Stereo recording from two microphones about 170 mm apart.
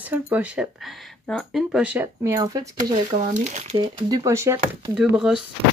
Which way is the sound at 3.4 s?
40° right (ahead or behind).